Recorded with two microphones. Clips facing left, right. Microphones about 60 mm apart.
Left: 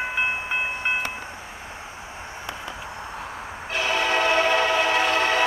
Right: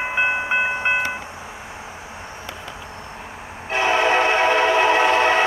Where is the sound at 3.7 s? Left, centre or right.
Right.